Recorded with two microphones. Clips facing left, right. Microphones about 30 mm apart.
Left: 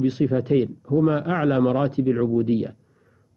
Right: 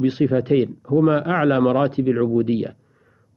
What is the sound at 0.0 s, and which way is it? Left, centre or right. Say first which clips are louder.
A man's voice: right 3 dB; right.